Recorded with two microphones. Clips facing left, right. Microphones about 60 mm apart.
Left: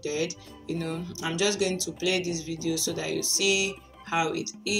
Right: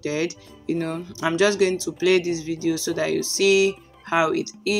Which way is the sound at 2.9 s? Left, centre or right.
Right.